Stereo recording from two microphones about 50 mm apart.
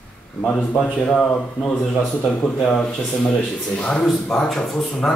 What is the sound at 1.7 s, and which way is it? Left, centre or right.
Speech, centre.